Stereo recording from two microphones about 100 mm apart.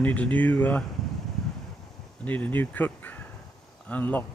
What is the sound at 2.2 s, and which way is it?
Speech, 15° left (ahead or behind).